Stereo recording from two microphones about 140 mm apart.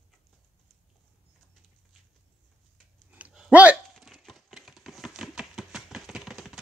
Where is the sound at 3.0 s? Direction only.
10° right (ahead or behind).